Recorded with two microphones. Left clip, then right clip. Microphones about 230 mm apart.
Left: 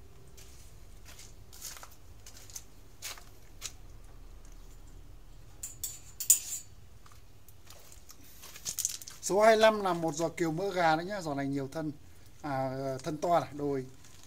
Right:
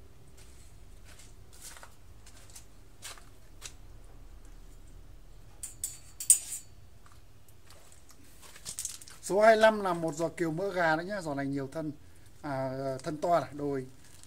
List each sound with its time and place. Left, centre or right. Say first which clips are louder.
8.8 s crumpling: left 6 dB; left
9.2 s speech: right 1 dB; centre